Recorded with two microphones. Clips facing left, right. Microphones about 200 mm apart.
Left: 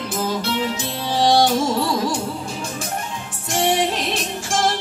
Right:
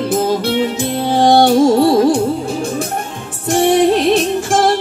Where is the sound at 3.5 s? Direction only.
55° right (ahead or behind).